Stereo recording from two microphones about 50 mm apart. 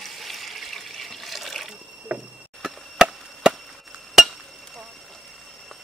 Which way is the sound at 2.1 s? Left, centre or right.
Right.